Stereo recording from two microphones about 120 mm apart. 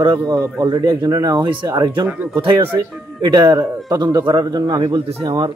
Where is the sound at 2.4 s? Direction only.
50° right (ahead or behind).